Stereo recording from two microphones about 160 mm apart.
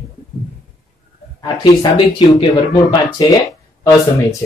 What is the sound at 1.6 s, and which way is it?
Speech, 25° left (ahead or behind).